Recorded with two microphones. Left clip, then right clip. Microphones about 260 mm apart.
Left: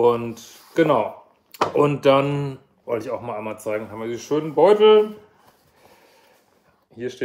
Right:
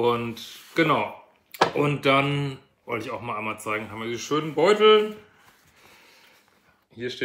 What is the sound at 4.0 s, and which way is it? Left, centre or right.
Speech, centre.